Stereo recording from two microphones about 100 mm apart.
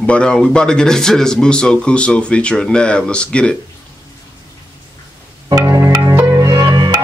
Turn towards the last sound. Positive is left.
turn(degrees=-40)  # may be behind; listen again after turning